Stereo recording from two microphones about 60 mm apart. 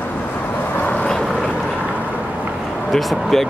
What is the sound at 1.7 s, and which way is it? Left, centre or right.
Vehicle, right.